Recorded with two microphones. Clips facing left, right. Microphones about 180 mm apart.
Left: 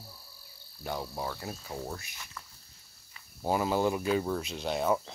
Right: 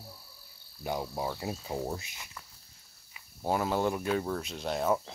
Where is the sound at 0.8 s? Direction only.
15° right (ahead or behind).